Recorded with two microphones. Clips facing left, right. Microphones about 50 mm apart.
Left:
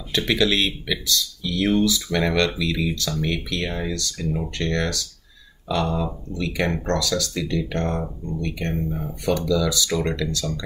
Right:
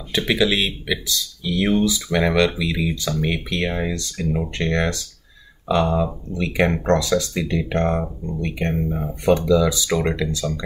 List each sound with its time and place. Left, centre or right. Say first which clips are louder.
0.1 s speech: right 1 dB; centre